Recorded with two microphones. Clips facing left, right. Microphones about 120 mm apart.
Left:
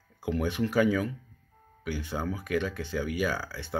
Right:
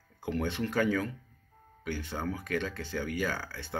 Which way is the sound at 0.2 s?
10° left (ahead or behind).